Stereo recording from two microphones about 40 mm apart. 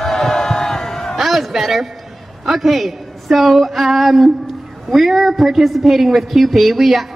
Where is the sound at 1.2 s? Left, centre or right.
Centre.